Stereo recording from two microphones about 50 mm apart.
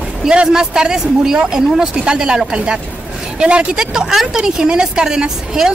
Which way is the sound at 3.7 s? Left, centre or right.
Centre.